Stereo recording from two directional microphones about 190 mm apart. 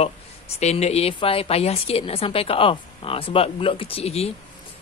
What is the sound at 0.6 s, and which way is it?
A woman's voice, 35° left (ahead or behind).